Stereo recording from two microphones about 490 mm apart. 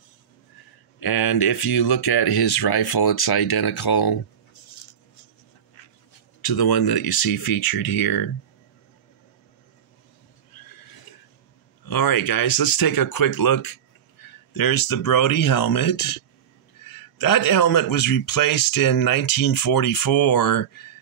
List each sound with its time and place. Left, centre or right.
0.9 s a man's voice: left
6.4 s a man's voice: left
11.8 s a man's voice: left